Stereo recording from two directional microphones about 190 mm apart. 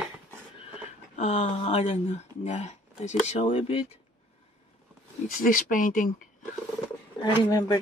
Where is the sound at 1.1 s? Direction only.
40° left (ahead or behind).